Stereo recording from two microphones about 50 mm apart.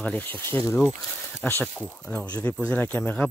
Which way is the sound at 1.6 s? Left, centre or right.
Left.